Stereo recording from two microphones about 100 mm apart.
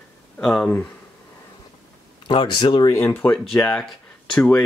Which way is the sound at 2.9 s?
25° left (ahead or behind).